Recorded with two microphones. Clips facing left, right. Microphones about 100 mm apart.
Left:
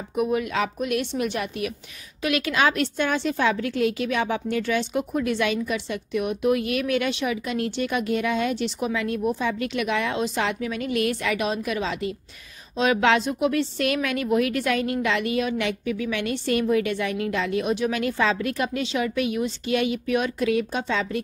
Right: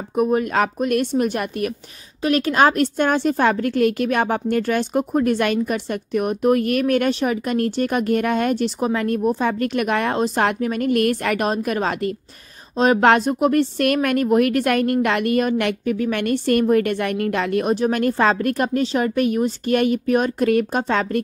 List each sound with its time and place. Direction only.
0.1 s a woman's voice: 40° right (ahead or behind)
17.7 s a woman's voice: 45° right (ahead or behind)